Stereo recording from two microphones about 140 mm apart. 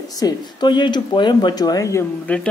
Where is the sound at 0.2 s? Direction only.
30° left (ahead or behind).